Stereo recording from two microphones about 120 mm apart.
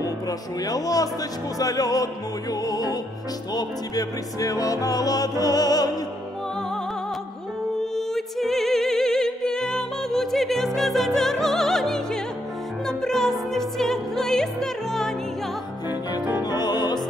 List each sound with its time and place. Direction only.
0.7 s music: 30° left (ahead or behind)
7.9 s music: 5° left (ahead or behind)
16.4 s music: 35° left (ahead or behind)